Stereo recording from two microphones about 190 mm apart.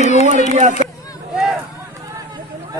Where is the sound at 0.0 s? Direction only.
35° left (ahead or behind).